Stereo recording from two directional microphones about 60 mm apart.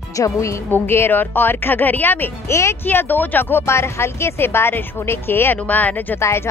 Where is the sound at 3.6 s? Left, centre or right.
Left.